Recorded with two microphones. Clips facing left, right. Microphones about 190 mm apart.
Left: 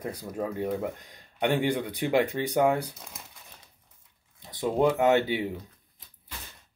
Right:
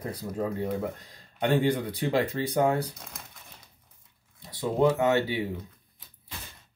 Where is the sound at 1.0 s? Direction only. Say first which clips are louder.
Left 1 dB; 15° left (ahead or behind).